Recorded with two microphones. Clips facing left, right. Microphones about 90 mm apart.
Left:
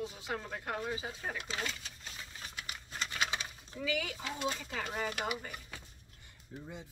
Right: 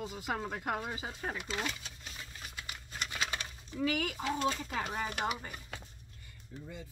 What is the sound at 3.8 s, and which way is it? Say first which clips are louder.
Speech: right 3 dB; 50° right (ahead or behind).